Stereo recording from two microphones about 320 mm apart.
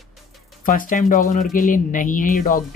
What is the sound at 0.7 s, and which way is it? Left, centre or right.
Speech, left.